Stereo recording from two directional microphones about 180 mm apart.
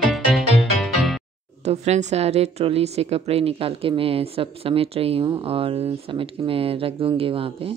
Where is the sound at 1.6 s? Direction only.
40° right (ahead or behind).